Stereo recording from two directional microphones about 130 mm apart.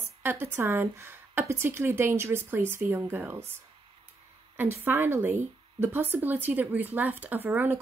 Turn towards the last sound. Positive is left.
turn(degrees=-15)  # may be behind; listen again after turning